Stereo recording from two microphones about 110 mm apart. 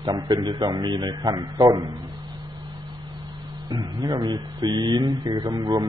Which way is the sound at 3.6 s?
35° right (ahead or behind).